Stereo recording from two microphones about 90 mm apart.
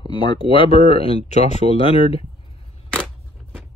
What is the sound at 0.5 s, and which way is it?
Speech, 85° left.